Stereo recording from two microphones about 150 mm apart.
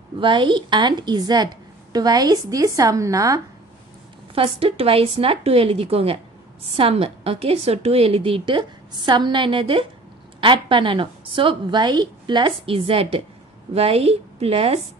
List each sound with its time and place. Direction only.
0.2 s a woman's voice: 30° right (ahead or behind)
4.4 s a woman's voice: 40° right (ahead or behind)